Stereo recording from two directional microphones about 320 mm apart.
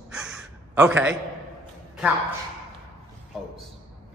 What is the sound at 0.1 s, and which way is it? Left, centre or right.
Gasp, centre.